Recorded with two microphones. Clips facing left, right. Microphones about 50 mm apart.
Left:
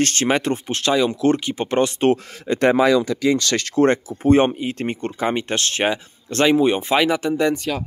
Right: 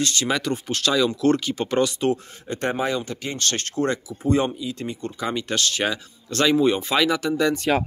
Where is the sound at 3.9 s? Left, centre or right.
Left.